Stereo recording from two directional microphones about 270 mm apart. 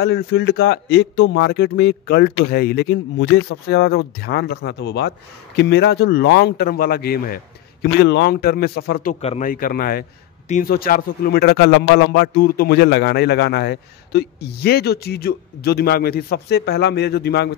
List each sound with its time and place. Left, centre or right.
0.0 s a man's voice: left